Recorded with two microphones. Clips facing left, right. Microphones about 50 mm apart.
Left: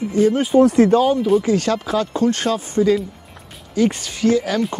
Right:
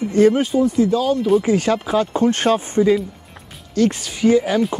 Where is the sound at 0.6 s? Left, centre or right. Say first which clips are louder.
Left 3 dB; left.